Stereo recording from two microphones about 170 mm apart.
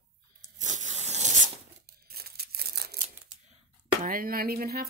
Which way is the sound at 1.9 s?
65° right (ahead or behind).